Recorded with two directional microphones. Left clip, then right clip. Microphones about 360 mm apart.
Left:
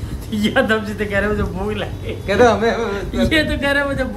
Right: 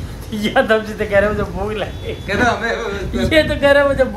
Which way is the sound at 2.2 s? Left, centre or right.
Left.